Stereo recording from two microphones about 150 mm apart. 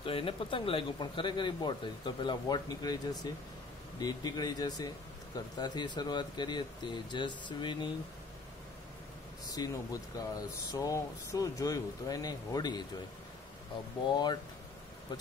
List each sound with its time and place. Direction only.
0.0 s speech: 35° left (ahead or behind)
9.5 s speech: 25° left (ahead or behind)
14.1 s speech: 30° left (ahead or behind)